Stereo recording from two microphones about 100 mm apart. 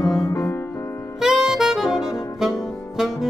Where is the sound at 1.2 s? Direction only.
5° right (ahead or behind).